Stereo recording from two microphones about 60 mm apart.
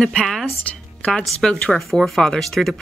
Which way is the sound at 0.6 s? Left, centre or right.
Centre.